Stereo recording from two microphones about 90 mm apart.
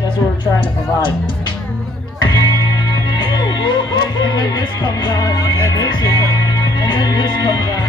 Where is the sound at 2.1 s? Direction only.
55° left (ahead or behind).